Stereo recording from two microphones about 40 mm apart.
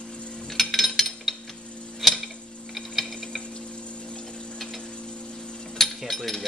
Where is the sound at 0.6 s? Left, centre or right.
Centre.